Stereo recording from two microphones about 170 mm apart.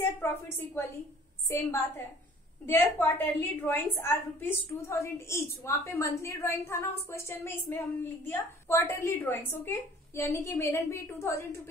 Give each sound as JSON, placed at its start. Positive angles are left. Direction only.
{"t": 0.2, "sound": "a woman's voice", "side_deg": 15}